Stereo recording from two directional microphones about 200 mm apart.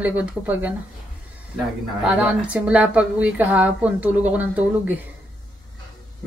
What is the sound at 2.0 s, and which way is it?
A woman's voice, 5° right (ahead or behind).